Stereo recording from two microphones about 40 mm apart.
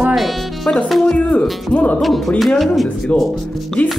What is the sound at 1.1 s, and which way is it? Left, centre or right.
Speech, left.